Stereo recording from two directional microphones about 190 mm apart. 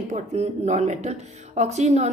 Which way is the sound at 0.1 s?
35° right (ahead or behind).